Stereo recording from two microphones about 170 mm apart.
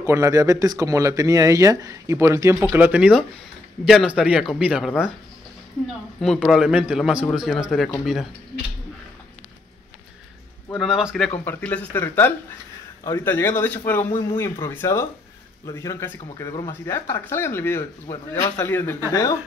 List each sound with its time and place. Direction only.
0.0 s a man's voice: 15° right (ahead or behind)
6.2 s a man's voice: centre (ahead or behind)
10.7 s a man's voice: centre (ahead or behind)